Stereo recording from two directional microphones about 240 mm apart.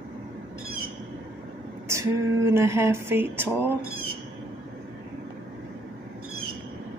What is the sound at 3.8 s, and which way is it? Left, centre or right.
Speech, right.